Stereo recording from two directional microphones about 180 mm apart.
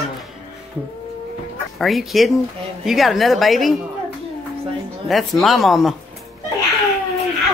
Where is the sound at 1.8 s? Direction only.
Centre (ahead or behind).